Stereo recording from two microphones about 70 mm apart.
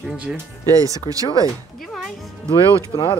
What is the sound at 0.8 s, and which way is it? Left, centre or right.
Speech, right.